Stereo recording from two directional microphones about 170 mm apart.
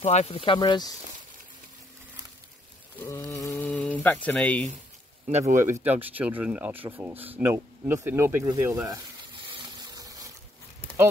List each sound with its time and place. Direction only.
0.0 s speech: 40° left (ahead or behind)
3.0 s speech: 15° left (ahead or behind)
5.6 s speech: 15° right (ahead or behind)
9.5 s pump: 20° right (ahead or behind)